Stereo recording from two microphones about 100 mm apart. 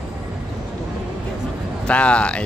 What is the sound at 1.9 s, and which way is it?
Speech, 10° left (ahead or behind).